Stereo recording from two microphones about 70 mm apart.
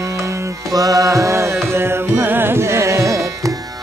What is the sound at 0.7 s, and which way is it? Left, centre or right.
Music, right.